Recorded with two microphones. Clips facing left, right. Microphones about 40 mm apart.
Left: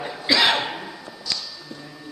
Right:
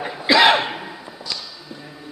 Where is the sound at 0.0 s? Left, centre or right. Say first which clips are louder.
Right 5 dB; centre.